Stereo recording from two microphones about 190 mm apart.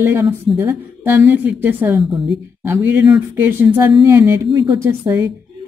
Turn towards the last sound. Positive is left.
turn(degrees=-15)  # may be behind; listen again after turning